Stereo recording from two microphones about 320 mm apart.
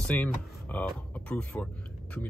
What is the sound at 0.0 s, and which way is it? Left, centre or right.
Speech, centre.